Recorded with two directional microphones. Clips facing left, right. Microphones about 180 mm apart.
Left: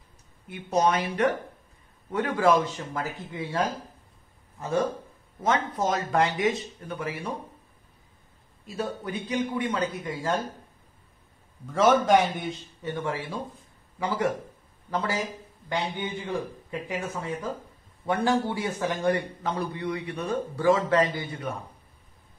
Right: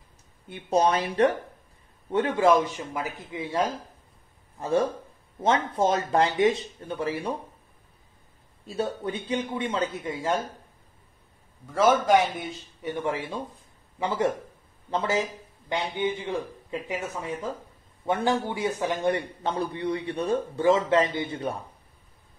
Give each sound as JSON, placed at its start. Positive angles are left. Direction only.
{"t": 0.5, "sound": "speech", "side_deg": -30}
{"t": 4.6, "sound": "a man's voice", "side_deg": -30}
{"t": 8.6, "sound": "a man's voice", "side_deg": -30}
{"t": 12.8, "sound": "a man's voice", "side_deg": -15}